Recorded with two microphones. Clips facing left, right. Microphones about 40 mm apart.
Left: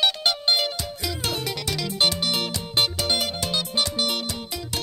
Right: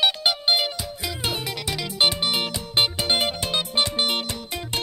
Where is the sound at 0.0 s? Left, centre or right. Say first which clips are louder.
Right 1 dB; centre.